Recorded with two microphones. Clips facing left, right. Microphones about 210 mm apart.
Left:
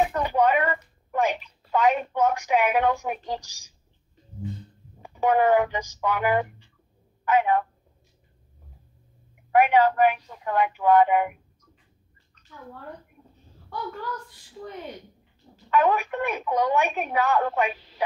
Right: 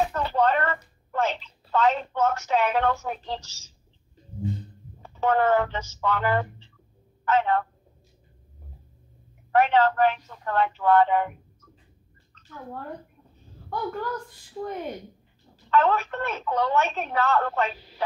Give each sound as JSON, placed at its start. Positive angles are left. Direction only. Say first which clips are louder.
{"t": 0.0, "sound": "speech", "louder": "left 2 dB", "side_deg": 15}
{"t": 5.0, "sound": "a woman's voice", "louder": "left 2 dB", "side_deg": 15}
{"t": 9.5, "sound": "a woman's voice", "louder": "left 1 dB", "side_deg": 15}
{"t": 13.7, "sound": "speech", "louder": "right 4 dB", "side_deg": -50}
{"t": 15.7, "sound": "a woman's voice", "louder": "even", "side_deg": 15}